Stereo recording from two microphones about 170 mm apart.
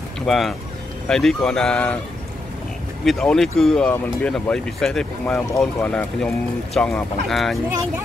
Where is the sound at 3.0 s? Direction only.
Centre (ahead or behind).